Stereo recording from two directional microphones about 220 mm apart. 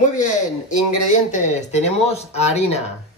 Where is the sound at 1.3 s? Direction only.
35° left (ahead or behind).